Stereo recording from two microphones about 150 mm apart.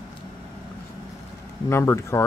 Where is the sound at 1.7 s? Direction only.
15° left (ahead or behind).